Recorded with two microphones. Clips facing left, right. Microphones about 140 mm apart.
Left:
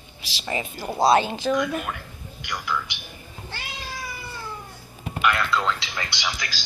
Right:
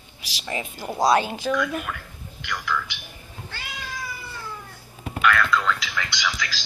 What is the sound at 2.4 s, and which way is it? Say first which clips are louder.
Speech: right 1 dB; 15° left (ahead or behind).